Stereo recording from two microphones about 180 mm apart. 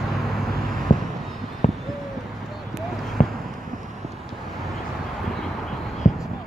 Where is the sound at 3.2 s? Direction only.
45° left (ahead or behind).